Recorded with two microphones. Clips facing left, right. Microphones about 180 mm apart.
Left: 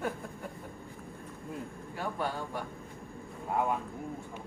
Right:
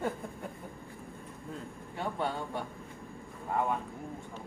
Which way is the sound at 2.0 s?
25° right (ahead or behind).